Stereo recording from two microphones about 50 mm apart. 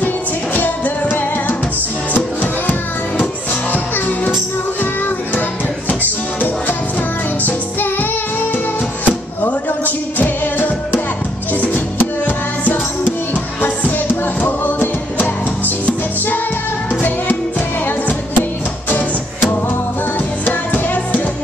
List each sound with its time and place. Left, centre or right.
0.6 s music: left
3.7 s music: left
7.4 s music: left
17.0 s music: left
20.4 s music: left